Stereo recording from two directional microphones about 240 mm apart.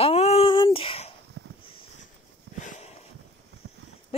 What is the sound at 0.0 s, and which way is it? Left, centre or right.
Child singing, left.